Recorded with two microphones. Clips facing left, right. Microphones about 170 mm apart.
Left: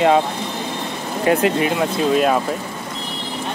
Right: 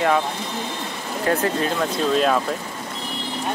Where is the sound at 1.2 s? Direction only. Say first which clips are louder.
Left 5 dB; 15° left (ahead or behind).